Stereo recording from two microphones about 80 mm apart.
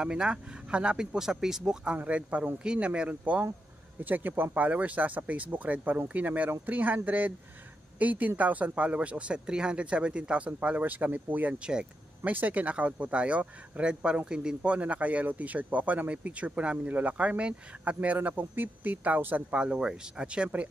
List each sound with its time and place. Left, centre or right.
0.0 s speech: centre
19.6 s speech: centre